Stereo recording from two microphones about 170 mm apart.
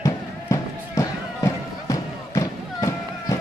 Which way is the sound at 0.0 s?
20° left (ahead or behind).